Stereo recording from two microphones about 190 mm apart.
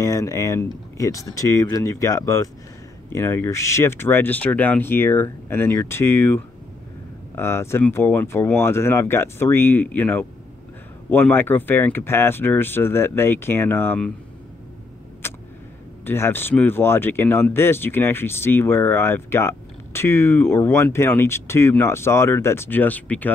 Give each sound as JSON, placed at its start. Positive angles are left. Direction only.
{"t": 0.0, "sound": "speech", "side_deg": 15}
{"t": 15.2, "sound": "tick", "side_deg": 10}
{"t": 16.1, "sound": "speech", "side_deg": 10}